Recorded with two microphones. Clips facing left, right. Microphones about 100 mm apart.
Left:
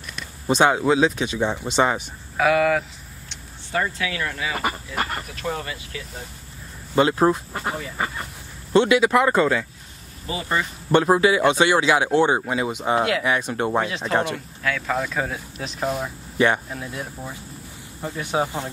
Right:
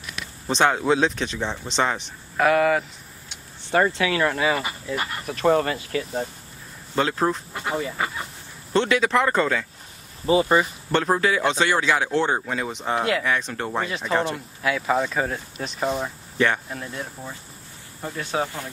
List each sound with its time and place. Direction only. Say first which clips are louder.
0.5 s speech: left 2 dB; 10° left (ahead or behind)
3.7 s speech: right 5 dB; 45° right (ahead or behind)
7.0 s speech: left 5 dB; 10° left (ahead or behind)
8.7 s speech: left 3 dB; 10° left (ahead or behind)
10.2 s speech: right 7 dB; 20° right (ahead or behind)
10.9 s speech: left 6 dB; 10° left (ahead or behind)
13.8 s speech: left 1 dB; centre (ahead or behind)
16.3 s cricket: left 3 dB; 15° left (ahead or behind)
16.6 s speech: left 1 dB; centre (ahead or behind); by 18.7 s 20° left (ahead or behind)